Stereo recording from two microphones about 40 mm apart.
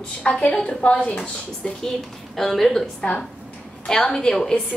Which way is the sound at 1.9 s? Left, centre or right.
Centre.